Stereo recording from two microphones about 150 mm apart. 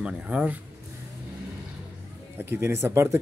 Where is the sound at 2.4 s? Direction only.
15° right (ahead or behind).